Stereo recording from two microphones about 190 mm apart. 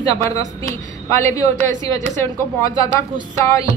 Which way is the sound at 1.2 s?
15° left (ahead or behind).